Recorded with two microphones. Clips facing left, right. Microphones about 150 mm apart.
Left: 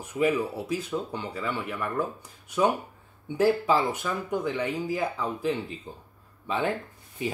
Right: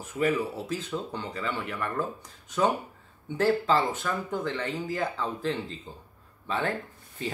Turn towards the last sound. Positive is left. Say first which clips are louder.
# left 3 dB
turn(degrees=15)  # may be behind; listen again after turning